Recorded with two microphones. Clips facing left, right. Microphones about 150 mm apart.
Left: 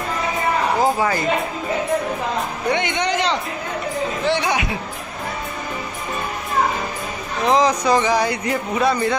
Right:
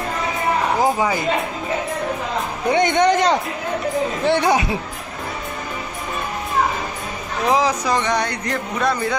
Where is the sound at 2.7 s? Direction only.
45° right (ahead or behind).